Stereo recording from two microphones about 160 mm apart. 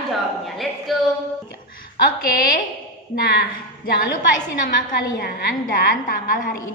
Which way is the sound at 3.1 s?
70° left (ahead or behind).